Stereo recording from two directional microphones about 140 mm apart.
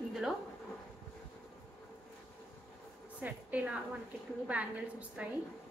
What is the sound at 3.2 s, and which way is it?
A woman's voice, 10° right (ahead or behind).